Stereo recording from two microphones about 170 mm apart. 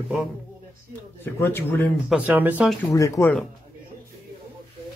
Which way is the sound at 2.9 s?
20° left (ahead or behind).